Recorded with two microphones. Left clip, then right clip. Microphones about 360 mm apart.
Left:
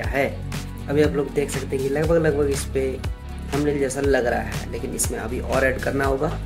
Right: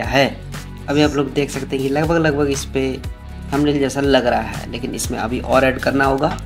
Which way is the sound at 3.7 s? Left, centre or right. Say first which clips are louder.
Right 4 dB; left.